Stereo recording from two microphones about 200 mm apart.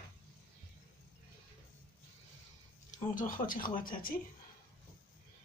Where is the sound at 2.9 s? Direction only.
40° left (ahead or behind).